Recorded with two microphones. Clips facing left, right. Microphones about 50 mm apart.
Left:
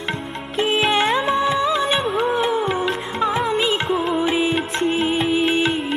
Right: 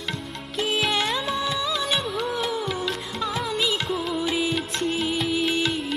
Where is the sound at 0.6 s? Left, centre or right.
Left.